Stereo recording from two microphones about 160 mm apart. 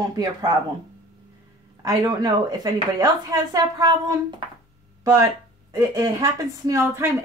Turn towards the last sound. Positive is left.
turn(degrees=-15)  # may be behind; listen again after turning